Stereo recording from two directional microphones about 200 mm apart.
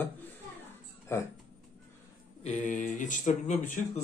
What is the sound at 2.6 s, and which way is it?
Speech, 35° left (ahead or behind).